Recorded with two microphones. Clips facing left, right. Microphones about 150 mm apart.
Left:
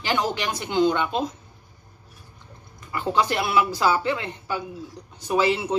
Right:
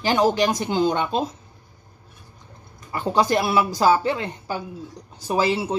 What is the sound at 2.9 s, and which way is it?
Speech, 35° right (ahead or behind).